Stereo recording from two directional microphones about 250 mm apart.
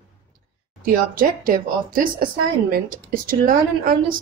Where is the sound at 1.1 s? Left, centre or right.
Right.